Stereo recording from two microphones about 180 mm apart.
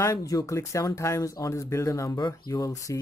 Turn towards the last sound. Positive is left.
turn(degrees=15)  # may be behind; listen again after turning